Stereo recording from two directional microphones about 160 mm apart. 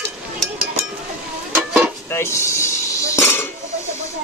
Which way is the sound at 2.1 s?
15° left (ahead or behind).